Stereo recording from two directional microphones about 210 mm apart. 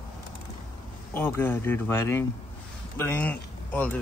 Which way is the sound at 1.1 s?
10° left (ahead or behind).